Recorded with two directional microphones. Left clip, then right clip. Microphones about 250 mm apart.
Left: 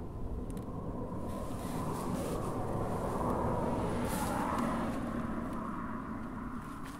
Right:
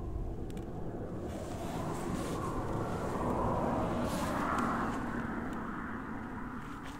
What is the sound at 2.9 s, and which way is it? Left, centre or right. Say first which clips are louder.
Vehicle: left 1 dB; centre.